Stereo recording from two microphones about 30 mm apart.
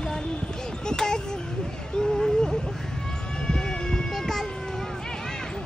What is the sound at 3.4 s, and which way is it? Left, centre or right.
Cat, left.